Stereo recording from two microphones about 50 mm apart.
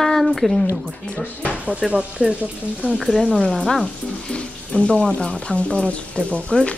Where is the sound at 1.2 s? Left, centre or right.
Left.